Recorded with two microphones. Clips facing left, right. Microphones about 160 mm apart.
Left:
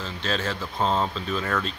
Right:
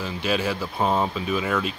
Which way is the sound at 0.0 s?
10° right (ahead or behind).